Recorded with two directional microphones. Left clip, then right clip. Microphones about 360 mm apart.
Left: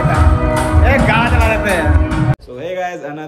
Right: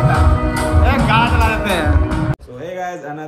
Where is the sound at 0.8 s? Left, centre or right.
Centre.